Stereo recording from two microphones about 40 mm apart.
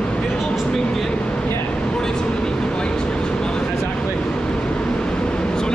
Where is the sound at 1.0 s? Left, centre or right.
Left.